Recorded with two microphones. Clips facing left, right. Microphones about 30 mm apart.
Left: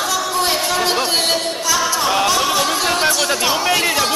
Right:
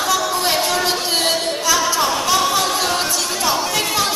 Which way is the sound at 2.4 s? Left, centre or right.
Centre.